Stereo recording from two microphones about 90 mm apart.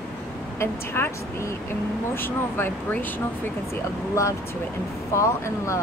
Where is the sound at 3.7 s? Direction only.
35° left (ahead or behind).